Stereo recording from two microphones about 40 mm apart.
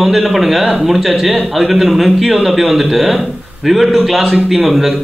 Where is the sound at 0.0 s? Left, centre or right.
Centre.